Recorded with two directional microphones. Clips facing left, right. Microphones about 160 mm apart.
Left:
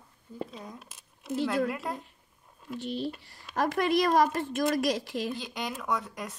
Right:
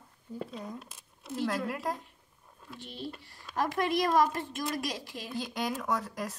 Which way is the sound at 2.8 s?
90° left.